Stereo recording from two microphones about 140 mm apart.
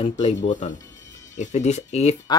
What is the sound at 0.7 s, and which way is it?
Music, 25° left (ahead or behind).